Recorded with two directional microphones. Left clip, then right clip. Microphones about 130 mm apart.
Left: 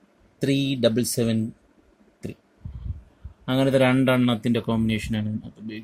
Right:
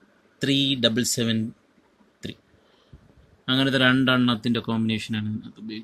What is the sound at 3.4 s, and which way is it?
A man's voice, 45° left (ahead or behind).